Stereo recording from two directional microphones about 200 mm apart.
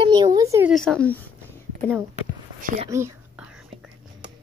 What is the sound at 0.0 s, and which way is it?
Speech, 20° right (ahead or behind).